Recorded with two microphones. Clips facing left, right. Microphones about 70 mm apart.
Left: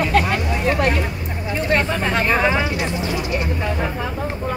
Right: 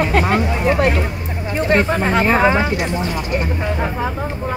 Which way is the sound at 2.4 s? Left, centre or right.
Right.